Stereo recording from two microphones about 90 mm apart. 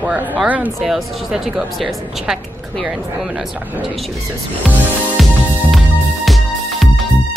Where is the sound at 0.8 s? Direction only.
5° right (ahead or behind).